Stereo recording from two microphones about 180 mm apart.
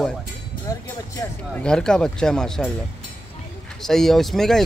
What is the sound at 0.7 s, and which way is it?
Speech, 15° left (ahead or behind).